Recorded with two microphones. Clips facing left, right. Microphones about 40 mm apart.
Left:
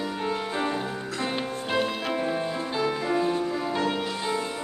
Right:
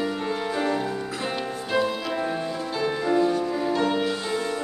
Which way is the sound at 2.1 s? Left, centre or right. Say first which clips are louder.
Even; centre.